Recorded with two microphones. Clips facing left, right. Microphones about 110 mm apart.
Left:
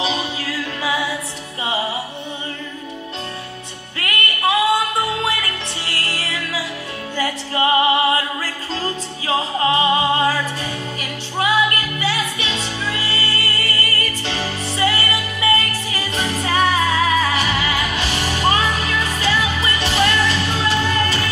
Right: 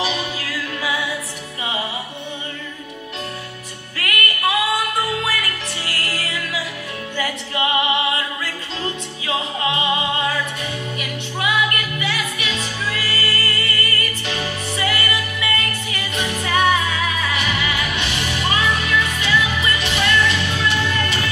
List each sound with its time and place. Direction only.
0.0 s music: 30° left (ahead or behind)
4.0 s music: 30° left (ahead or behind)